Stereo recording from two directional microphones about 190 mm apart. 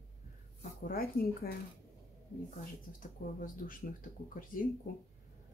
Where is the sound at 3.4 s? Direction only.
45° left (ahead or behind).